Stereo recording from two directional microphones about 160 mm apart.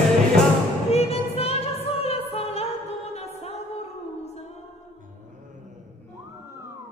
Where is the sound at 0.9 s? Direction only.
40° left (ahead or behind).